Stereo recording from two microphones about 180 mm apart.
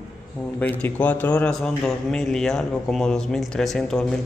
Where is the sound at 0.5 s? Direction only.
10° left (ahead or behind).